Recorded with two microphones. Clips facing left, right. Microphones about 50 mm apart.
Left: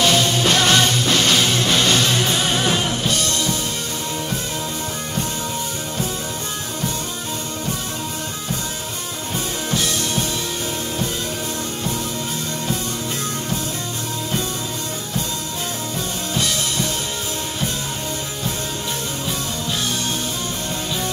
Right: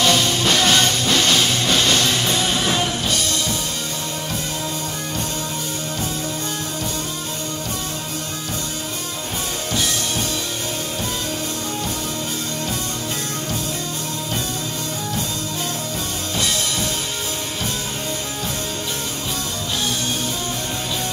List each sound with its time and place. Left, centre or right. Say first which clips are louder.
0.0 s music: left 1 dB; centre